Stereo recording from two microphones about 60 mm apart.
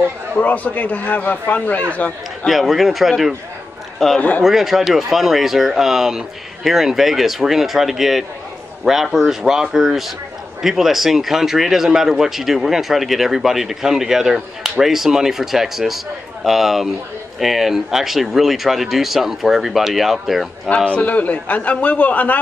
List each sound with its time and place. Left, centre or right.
0.4 s a man's voice: left
2.4 s a man's voice: centre
20.7 s a man's voice: left